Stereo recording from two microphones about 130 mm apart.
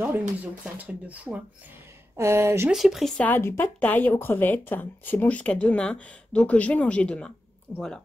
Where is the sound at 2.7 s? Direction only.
5° right (ahead or behind).